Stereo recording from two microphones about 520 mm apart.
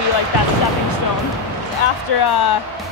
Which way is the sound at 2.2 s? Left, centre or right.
Left.